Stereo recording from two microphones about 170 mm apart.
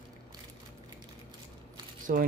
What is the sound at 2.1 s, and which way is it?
Speech, 50° right (ahead or behind).